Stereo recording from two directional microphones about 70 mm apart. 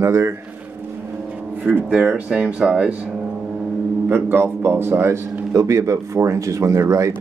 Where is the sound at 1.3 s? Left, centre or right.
Right.